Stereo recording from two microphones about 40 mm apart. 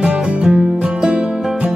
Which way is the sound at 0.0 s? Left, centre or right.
Right.